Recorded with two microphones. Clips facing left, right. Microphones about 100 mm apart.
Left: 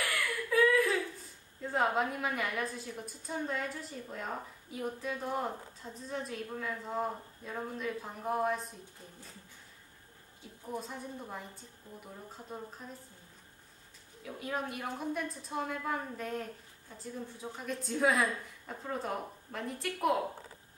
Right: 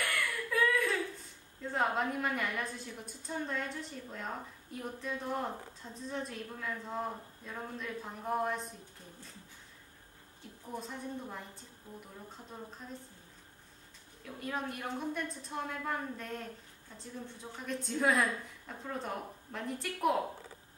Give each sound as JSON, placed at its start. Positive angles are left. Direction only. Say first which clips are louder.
{"t": 0.0, "sound": "a sound", "louder": "left 1 dB", "side_deg": 0}
{"t": 1.6, "sound": "a woman's voice", "louder": "left 2 dB", "side_deg": 5}
{"t": 10.7, "sound": "a woman's voice", "louder": "left 1 dB", "side_deg": 5}
{"t": 14.2, "sound": "a woman's voice", "louder": "left 1 dB", "side_deg": 5}